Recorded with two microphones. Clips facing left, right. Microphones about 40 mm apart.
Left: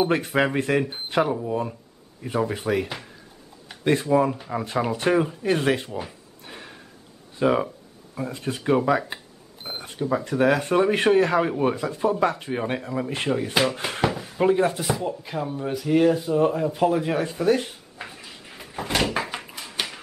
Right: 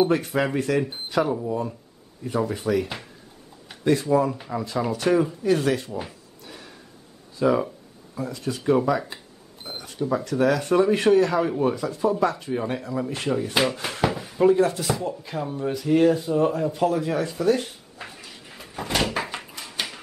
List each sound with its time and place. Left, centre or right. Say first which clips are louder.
0.1 s speech: left 1 dB; left
5.9 s speech: even; centre
6.4 s a sound: left 2 dB; left
7.3 s speech: even; left
14.0 s a sound: right 1 dB; centre
14.4 s speech: right 2 dB; left
17.0 s speech: even; left
17.6 s a sound: left 1 dB; centre
18.2 s door: left 1 dB; centre